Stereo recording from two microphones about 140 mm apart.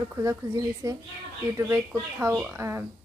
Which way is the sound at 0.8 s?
25° right (ahead or behind).